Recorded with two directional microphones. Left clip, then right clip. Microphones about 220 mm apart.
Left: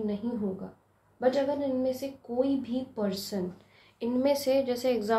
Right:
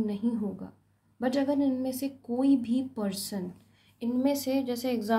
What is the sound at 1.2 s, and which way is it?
A woman's voice, 45° right (ahead or behind).